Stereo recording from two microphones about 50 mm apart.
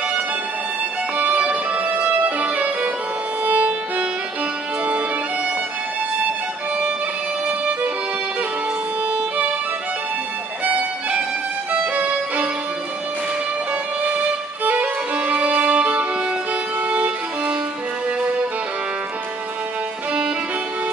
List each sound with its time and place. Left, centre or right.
1.1 s music: right
10.6 s music: right
11.9 s violin: right
14.6 s violin: right
16.8 s music: right